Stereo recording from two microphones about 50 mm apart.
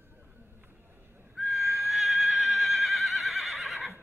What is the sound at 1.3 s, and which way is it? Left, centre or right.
Neigh, centre.